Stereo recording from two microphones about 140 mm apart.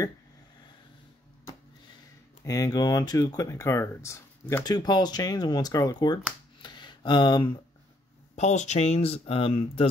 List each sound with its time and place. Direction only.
2.4 s speech: 25° left (ahead or behind)
8.4 s speech: 55° left (ahead or behind)